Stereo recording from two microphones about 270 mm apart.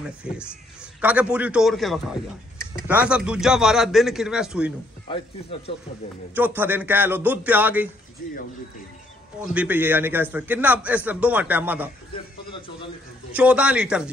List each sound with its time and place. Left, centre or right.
0.3 s a man's voice: centre
5.0 s speech: centre
6.3 s a man's voice: centre
8.2 s speech: left
9.4 s a man's voice: centre
13.3 s a man's voice: centre